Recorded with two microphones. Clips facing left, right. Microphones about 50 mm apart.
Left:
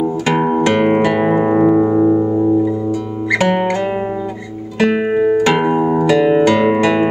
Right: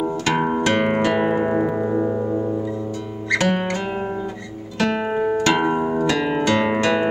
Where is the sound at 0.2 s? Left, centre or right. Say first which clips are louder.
Left 5 dB; centre.